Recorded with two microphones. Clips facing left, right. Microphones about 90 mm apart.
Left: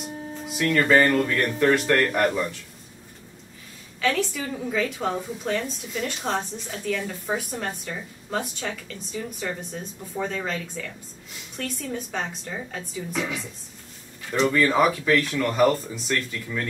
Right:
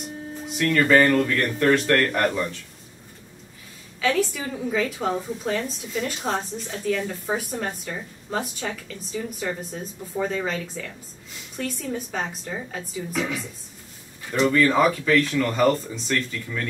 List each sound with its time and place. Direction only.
0.6 s speech: 5° left (ahead or behind)
4.0 s a woman's voice: centre (ahead or behind)